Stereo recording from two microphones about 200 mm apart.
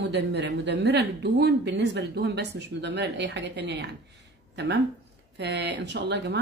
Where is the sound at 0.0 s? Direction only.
60° right (ahead or behind).